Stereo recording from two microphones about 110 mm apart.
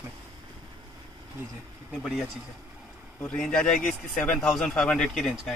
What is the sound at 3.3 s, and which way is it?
Speech, 10° left (ahead or behind).